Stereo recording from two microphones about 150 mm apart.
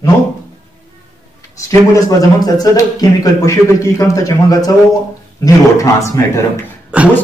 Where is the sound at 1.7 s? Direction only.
20° left (ahead or behind).